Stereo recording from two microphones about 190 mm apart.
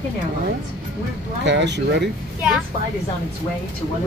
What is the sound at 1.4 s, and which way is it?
Speech, 70° right (ahead or behind).